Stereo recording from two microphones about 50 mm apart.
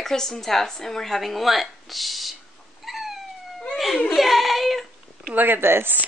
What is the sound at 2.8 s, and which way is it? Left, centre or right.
Cat, centre.